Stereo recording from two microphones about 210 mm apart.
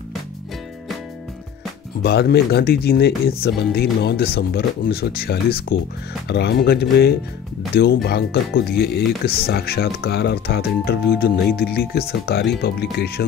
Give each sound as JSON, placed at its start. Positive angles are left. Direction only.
{"t": 2.0, "sound": "speech", "side_deg": 50}